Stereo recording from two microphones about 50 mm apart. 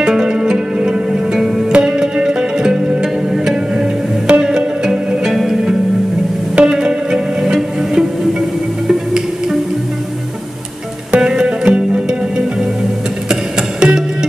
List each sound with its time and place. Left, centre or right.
0.0 s music: centre
11.1 s music: centre